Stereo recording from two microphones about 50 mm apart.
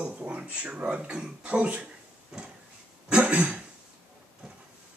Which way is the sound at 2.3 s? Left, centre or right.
Centre.